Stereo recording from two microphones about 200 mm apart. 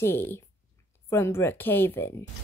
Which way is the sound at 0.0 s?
10° left (ahead or behind).